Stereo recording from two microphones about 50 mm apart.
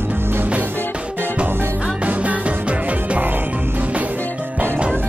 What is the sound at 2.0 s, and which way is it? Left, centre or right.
Music, right.